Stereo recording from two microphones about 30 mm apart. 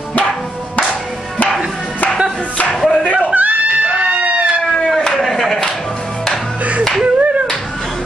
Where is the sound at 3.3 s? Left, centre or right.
Right.